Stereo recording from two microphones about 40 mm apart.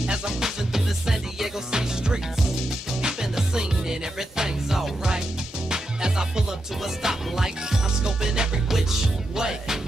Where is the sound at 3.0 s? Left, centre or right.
Centre.